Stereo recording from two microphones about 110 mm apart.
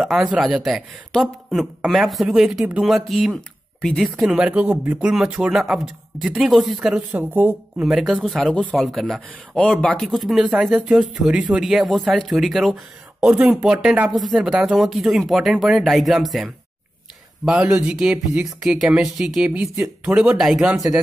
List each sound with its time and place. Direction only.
0.0 s speech: centre (ahead or behind)
7.2 s speech: 15° right (ahead or behind)
7.8 s speech: centre (ahead or behind)
13.2 s speech: 15° right (ahead or behind)
17.6 s speech: 10° right (ahead or behind)